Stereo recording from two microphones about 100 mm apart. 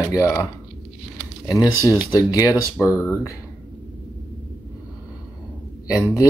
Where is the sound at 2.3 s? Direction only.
35° left (ahead or behind).